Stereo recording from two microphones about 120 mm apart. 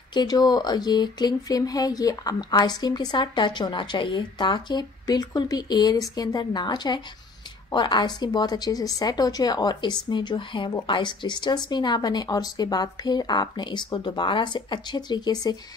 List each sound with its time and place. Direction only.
0.1 s a woman's voice: 35° left (ahead or behind)